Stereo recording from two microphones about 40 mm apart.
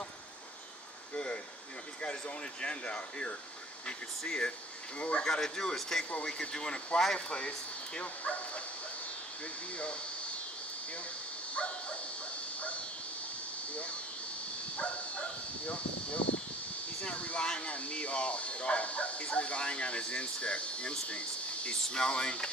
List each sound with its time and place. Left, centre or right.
1.1 s a sound: left
2.0 s speech: left
6.2 s speech: left
11.5 s dog: left
13.7 s speech: left